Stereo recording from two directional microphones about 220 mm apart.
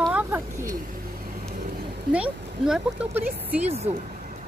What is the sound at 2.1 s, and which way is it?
Speech, 5° right (ahead or behind).